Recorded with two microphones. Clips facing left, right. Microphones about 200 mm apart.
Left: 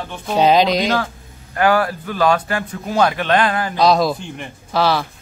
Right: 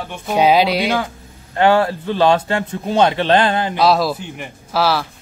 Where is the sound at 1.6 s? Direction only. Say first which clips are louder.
Right 2 dB; 25° right (ahead or behind).